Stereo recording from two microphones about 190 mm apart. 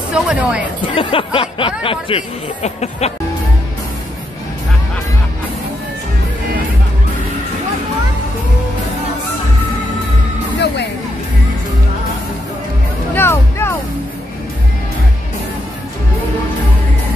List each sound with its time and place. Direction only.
0.1 s speech: 5° right (ahead or behind)
0.8 s speech: 30° left (ahead or behind)
13.1 s music: 10° left (ahead or behind)